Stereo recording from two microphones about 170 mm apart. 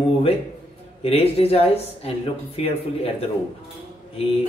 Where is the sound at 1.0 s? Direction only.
35° left (ahead or behind).